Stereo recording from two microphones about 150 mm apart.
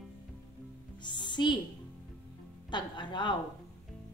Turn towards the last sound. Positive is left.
turn(degrees=30)  # may be behind; listen again after turning